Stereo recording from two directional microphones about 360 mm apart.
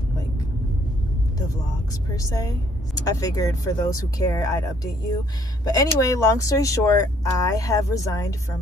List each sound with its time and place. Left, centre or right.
2.1 s speech: centre